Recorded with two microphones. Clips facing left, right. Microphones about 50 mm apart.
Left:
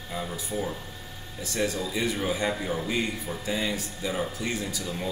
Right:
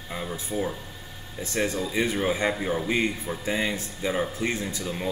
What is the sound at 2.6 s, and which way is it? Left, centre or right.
Speech, centre.